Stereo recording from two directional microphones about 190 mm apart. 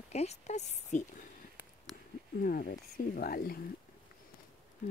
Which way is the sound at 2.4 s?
50° left (ahead or behind).